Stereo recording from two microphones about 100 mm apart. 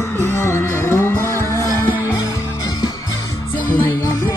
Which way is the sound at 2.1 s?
45° left (ahead or behind).